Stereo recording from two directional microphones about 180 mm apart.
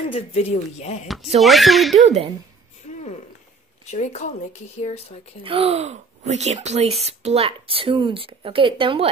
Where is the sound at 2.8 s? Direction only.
40° left (ahead or behind).